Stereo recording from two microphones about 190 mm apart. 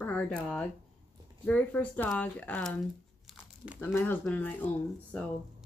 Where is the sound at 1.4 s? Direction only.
10° left (ahead or behind).